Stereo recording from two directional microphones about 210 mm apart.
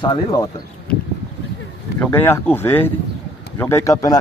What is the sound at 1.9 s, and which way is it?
Speech, 10° left (ahead or behind).